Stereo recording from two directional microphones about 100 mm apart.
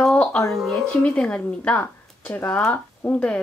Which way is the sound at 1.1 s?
10° left (ahead or behind).